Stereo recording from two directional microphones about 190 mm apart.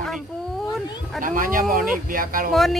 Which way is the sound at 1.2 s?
45° right (ahead or behind).